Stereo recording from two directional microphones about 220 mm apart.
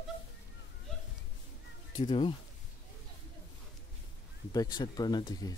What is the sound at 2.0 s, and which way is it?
Speech, 25° left (ahead or behind).